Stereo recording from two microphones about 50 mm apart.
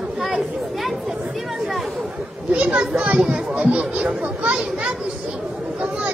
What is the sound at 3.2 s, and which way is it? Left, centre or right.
Speech, right.